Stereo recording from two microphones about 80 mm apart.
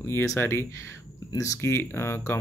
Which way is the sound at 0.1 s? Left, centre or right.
Left.